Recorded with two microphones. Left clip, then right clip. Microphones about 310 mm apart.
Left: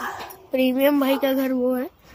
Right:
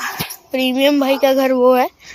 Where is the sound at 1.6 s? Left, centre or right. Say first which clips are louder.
Right 12 dB; right.